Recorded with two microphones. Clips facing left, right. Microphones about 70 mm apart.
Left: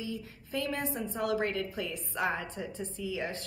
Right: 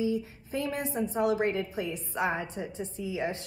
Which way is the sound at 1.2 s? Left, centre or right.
Centre.